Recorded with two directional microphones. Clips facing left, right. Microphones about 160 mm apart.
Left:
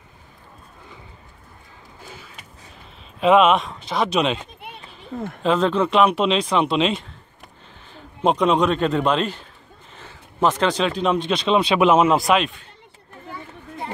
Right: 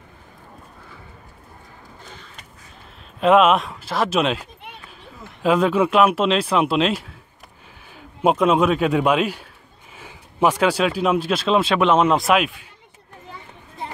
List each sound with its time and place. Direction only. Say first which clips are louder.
2.0 s a sound: left 4 dB; 5° left (ahead or behind)
3.2 s speech: even; centre (ahead or behind)
5.1 s speech: left 16 dB; 55° left (ahead or behind)
5.4 s a man's voice: right 2 dB; 5° right (ahead or behind)